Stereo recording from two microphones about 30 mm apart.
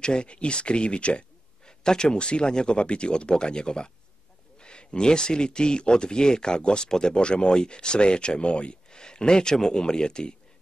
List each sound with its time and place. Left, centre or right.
0.0 s speech: left
1.7 s a sound: left
2.1 s speech: left